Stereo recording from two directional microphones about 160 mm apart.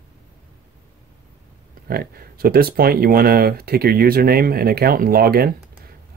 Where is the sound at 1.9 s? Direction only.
70° right (ahead or behind).